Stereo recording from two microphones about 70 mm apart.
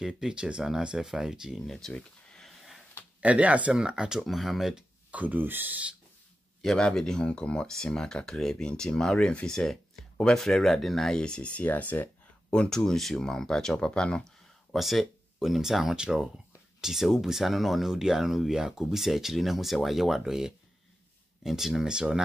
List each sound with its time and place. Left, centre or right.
0.0 s speech: centre
1.7 s a sound: centre
3.2 s speech: centre
5.1 s speech: right
6.6 s speech: centre; by 12.1 s left
12.4 s speech: centre
14.7 s speech: centre